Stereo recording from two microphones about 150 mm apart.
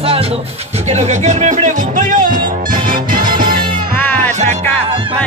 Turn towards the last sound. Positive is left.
turn(degrees=-50)  # may be behind; listen again after turning